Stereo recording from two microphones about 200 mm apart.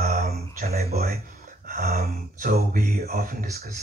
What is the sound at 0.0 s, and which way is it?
Mantra, 50° right (ahead or behind).